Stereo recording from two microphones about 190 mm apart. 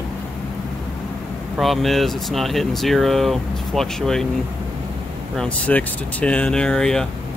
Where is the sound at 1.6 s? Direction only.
Centre (ahead or behind).